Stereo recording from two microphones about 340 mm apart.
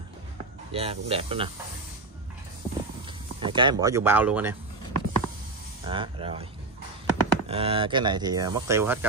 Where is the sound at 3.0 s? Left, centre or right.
Centre.